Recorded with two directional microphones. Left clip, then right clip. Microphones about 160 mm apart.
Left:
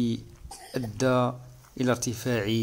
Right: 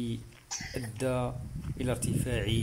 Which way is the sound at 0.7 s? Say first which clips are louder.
Left 8 dB; 15° left (ahead or behind).